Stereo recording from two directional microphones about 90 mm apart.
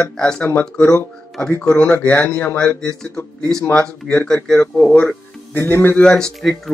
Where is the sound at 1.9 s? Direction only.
25° left (ahead or behind).